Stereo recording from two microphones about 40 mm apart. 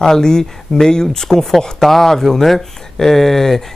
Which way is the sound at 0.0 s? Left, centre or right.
Centre.